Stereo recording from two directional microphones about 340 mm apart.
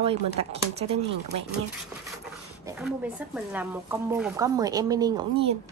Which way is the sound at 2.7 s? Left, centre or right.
Centre.